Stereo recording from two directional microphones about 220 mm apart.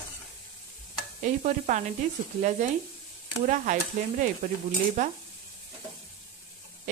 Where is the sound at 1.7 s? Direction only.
35° right (ahead or behind).